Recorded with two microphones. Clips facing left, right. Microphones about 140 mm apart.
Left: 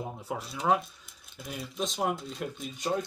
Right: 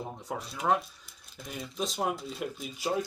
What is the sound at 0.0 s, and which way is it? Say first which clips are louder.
Speech: left 1 dB; 5° left (ahead or behind).